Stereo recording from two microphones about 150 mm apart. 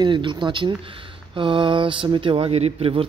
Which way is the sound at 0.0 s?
30° right (ahead or behind).